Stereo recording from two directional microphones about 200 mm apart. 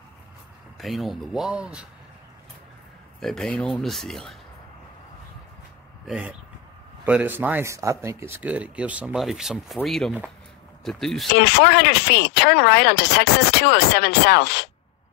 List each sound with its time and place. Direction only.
0.7 s speech: centre (ahead or behind)
3.2 s speech: centre (ahead or behind)
6.0 s speech: 5° right (ahead or behind)
11.3 s speech: 50° left (ahead or behind)